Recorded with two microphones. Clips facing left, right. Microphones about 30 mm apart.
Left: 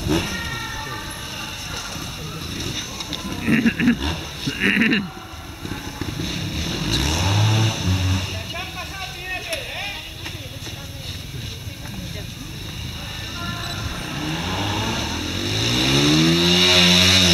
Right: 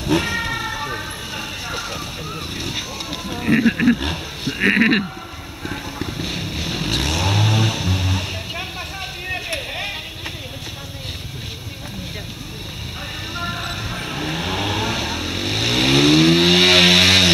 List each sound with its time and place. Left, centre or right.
0.0 s vehicle: centre
2.5 s fire: centre
3.3 s sheep: centre
4.0 s speech: centre
5.7 s vehicle: centre
9.3 s a sound: centre
13.4 s vehicle: centre